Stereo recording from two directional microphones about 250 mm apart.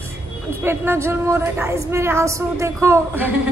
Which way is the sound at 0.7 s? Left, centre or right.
Centre.